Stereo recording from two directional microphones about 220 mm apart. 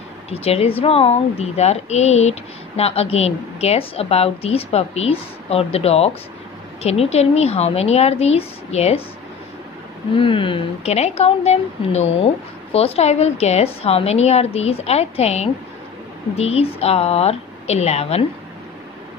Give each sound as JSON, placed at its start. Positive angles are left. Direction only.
{"t": 0.3, "sound": "speech", "side_deg": 25}
{"t": 10.1, "sound": "speech", "side_deg": 25}